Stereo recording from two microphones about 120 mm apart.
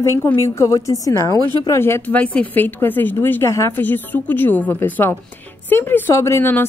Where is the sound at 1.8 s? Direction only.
20° left (ahead or behind).